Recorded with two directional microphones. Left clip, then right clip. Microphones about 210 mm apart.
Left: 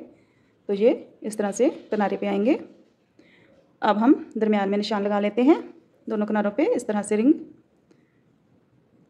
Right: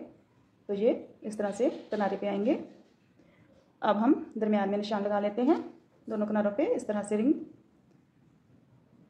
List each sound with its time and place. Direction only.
0.7 s a woman's voice: 55° left (ahead or behind)
3.8 s a woman's voice: 50° left (ahead or behind)